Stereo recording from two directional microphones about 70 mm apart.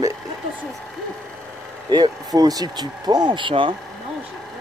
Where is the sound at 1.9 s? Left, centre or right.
Right.